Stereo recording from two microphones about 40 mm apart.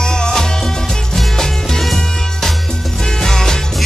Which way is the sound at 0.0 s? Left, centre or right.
Centre.